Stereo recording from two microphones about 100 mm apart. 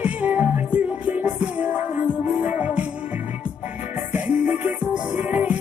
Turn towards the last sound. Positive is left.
turn(degrees=-15)  # may be behind; listen again after turning